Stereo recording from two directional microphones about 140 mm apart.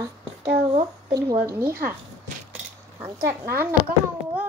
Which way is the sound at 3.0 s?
15° right (ahead or behind).